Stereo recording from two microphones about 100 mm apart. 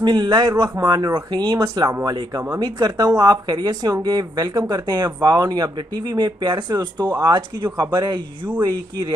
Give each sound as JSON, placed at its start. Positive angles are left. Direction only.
{"t": 0.0, "sound": "speech", "side_deg": -45}
{"t": 0.5, "sound": "speech", "side_deg": -30}